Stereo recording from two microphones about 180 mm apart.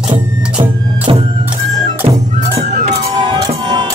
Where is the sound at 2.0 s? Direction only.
35° right (ahead or behind).